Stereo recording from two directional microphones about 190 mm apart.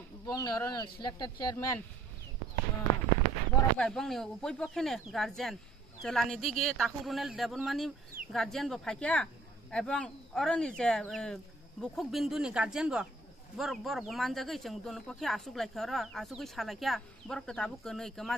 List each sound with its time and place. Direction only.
0.3 s speech: 20° left (ahead or behind)
3.7 s speech: 5° left (ahead or behind)